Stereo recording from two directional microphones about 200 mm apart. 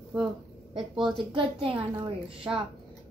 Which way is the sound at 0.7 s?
Centre (ahead or behind).